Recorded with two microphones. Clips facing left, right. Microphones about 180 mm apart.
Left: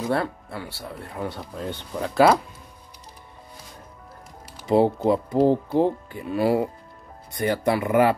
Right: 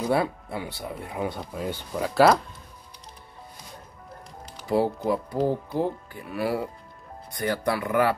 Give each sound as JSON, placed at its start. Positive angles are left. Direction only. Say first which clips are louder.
{"t": 0.1, "sound": "speech", "louder": "right 2 dB", "side_deg": -15}
{"t": 4.6, "sound": "speech", "louder": "left 5 dB", "side_deg": 25}